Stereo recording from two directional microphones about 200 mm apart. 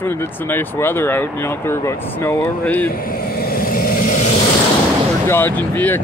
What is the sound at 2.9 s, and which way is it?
Vehicle, 45° left (ahead or behind).